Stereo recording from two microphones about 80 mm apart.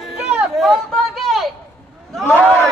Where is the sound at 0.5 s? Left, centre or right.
Centre.